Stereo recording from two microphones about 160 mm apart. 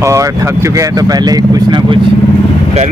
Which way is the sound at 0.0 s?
20° right (ahead or behind).